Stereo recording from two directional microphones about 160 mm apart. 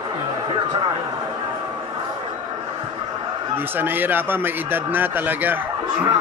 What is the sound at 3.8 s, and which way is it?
A man's voice, 10° right (ahead or behind).